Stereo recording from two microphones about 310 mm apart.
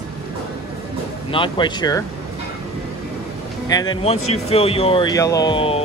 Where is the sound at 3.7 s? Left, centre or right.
Centre.